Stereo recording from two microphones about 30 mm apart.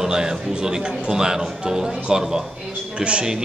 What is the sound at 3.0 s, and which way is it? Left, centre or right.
Speech, right.